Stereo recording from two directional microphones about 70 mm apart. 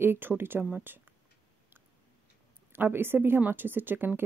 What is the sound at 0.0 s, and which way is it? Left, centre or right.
A woman's voice, right.